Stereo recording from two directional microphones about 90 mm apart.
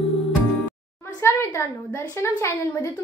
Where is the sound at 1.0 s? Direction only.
30° left (ahead or behind).